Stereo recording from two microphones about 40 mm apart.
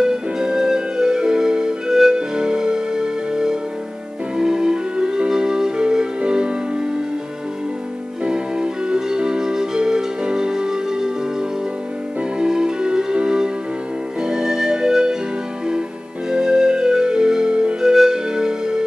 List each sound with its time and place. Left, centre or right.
0.0 s music: centre
8.2 s music: right
12.4 s music: centre
16.3 s music: centre
17.9 s music: centre